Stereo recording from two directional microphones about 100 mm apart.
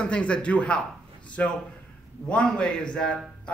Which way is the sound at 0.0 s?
10° left (ahead or behind).